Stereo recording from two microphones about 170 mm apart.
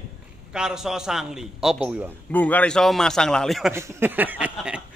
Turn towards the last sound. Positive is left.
turn(degrees=-10)  # may be behind; listen again after turning